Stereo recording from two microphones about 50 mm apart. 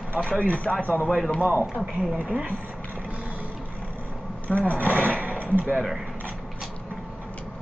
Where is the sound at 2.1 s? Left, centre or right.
Right.